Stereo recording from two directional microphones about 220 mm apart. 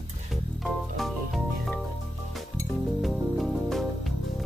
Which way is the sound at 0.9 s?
Centre (ahead or behind).